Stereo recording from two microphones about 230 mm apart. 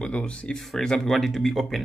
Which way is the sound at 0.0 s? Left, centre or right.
Centre.